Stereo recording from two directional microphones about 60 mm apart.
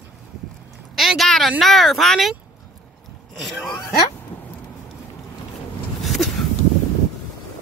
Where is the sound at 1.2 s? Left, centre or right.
Centre.